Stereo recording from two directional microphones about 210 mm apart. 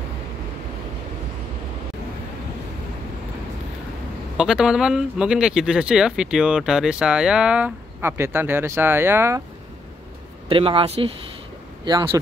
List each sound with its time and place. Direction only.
4.4 s speech: 5° right (ahead or behind)
10.5 s speech: 25° right (ahead or behind)